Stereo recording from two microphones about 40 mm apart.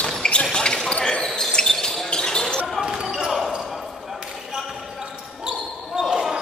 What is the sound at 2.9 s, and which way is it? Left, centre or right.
Basketball bounce, centre.